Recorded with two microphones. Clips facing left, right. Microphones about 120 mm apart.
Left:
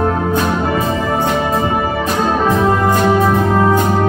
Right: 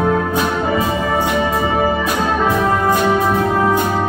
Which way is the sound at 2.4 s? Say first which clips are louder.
Left 2 dB; 20° left (ahead or behind).